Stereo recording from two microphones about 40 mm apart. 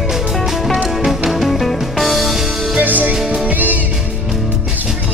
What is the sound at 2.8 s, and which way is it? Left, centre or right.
Music, right.